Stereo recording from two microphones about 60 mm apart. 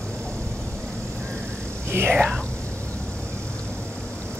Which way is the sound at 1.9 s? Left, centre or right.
Right.